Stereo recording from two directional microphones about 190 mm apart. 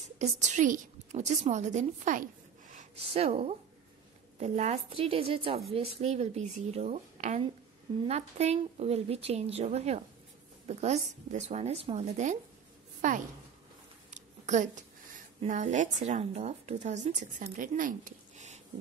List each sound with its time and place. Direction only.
0.2 s a woman's voice: 40° right (ahead or behind)